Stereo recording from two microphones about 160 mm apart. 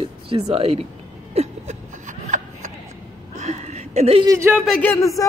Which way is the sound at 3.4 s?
45° right (ahead or behind).